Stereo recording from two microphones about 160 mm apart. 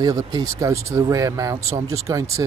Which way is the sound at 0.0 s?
25° right (ahead or behind).